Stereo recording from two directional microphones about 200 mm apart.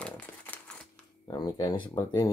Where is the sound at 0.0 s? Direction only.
5° left (ahead or behind).